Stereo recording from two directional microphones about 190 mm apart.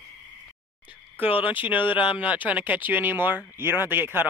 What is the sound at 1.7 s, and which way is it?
Speech, 25° left (ahead or behind).